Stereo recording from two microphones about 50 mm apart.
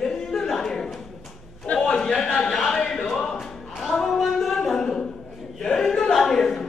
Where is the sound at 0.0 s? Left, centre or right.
Centre.